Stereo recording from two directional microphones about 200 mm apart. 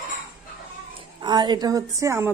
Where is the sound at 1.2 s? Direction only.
20° right (ahead or behind).